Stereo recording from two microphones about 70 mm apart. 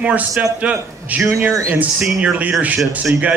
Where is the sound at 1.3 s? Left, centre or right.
Right.